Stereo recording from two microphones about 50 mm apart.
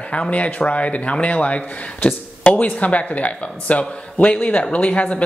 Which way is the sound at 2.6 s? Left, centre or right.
Left.